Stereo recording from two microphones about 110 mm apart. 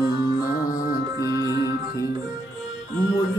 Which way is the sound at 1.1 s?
35° right (ahead or behind).